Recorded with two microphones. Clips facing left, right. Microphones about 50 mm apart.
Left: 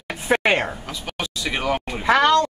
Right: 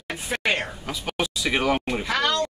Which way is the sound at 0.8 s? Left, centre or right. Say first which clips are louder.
Right 2 dB; centre.